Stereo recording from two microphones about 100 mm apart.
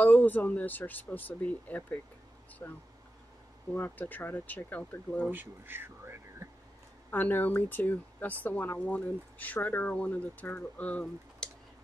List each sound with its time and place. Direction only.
0.0 s speech: 15° left (ahead or behind)
2.6 s speech: 30° left (ahead or behind)
3.7 s speech: 20° left (ahead or behind)
5.3 s a sound: 20° right (ahead or behind)
7.1 s speech: 20° left (ahead or behind)